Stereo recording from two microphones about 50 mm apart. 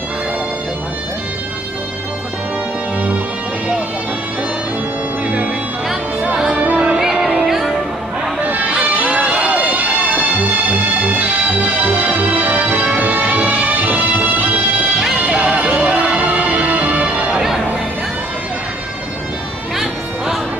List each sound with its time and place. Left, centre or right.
6.5 s music: right
7.0 s music: centre
8.4 s music: right
15.2 s music: right